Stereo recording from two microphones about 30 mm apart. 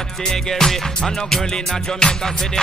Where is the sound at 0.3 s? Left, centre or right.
Centre.